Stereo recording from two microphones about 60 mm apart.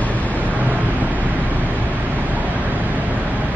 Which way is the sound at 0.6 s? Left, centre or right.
Right.